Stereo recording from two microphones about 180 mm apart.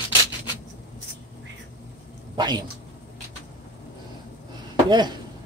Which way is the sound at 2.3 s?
25° right (ahead or behind).